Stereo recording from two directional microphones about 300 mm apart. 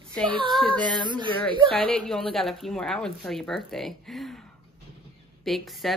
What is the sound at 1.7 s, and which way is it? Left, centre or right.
A woman's voice, centre.